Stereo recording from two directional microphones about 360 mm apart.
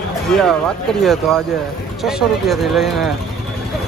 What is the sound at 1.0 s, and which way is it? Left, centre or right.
Speech, centre.